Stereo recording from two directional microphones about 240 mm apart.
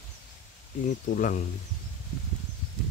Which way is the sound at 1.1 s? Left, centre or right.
Left.